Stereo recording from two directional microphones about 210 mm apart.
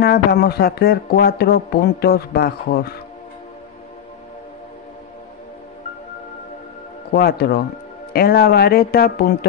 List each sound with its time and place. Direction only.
0.0 s speech: 45° left (ahead or behind)
7.2 s speech: 50° left (ahead or behind)